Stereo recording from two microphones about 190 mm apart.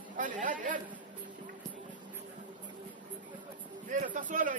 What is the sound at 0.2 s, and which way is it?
Speech, 45° right (ahead or behind).